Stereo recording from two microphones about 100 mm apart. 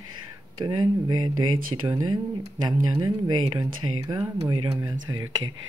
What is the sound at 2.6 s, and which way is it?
Speech, 40° right (ahead or behind).